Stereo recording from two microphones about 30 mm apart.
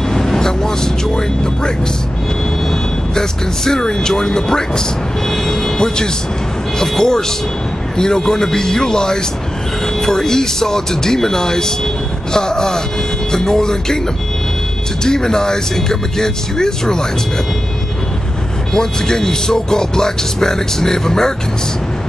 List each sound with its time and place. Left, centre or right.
0.1 s music: centre
2.7 s speech: centre
5.3 s vehicle: centre
6.8 s speech: centre
15.0 s speech: centre
18.7 s speech: left